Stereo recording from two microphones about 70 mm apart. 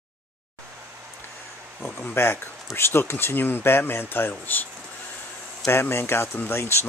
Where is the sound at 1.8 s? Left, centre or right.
Left.